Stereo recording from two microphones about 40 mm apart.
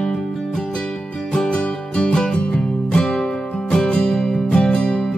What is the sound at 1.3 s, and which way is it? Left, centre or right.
Music, centre.